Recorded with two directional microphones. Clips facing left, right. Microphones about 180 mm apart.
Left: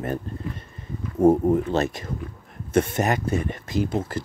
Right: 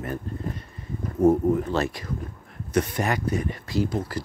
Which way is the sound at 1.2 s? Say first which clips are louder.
Left 2 dB; 30° left (ahead or behind).